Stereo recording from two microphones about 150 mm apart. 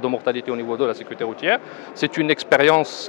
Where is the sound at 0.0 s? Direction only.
15° left (ahead or behind).